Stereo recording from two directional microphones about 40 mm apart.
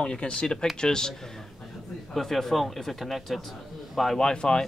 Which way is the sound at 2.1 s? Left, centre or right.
Centre.